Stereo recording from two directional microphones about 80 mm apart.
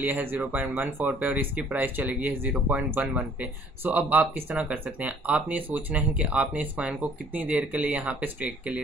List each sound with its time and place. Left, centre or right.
0.0 s speech: right